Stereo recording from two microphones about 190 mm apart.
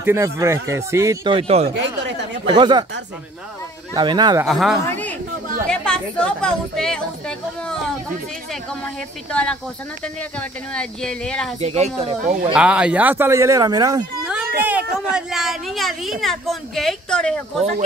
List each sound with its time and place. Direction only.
0.0 s speech: 15° right (ahead or behind)
1.3 s speech: 35° right (ahead or behind)
3.9 s speech: 25° right (ahead or behind)
4.5 s speech: centre (ahead or behind)
9.3 s speech: 5° left (ahead or behind)
10.7 s speech: 5° left (ahead or behind)
11.6 s speech: 35° right (ahead or behind)
12.5 s speech: 5° right (ahead or behind)
14.2 s speech: 10° right (ahead or behind)